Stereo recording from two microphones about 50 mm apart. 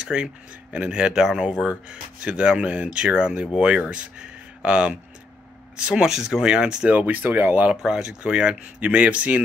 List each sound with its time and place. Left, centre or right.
0.0 s speech: centre
7.1 s speech: right
7.7 s speech: centre